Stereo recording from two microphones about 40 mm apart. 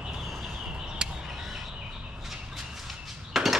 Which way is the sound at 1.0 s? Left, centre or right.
Centre.